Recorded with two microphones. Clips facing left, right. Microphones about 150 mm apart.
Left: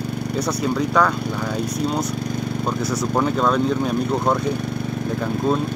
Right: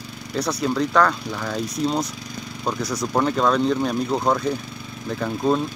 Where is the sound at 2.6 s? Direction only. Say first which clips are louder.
Even; 10° left (ahead or behind).